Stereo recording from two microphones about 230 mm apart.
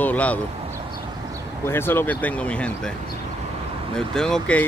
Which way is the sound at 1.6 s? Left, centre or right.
Centre.